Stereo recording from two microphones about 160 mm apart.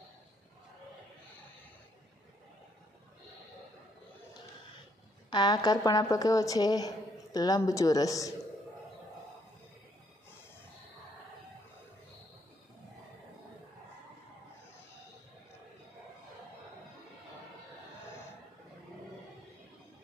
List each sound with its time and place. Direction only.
5.3 s a woman's voice: 25° left (ahead or behind)